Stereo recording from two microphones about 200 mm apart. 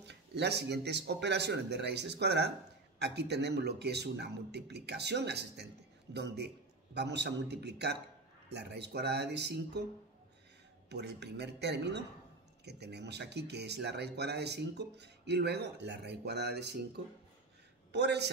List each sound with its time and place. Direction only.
0.0 s speech: 55° right (ahead or behind)
10.9 s speech: 55° right (ahead or behind)